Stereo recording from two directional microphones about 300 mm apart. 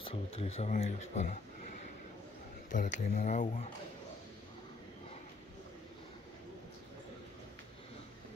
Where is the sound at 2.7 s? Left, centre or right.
Left.